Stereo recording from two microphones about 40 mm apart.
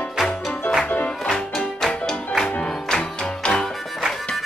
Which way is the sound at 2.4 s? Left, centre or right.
Left.